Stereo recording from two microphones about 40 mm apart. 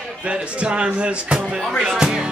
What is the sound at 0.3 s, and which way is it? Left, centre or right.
Speech, right.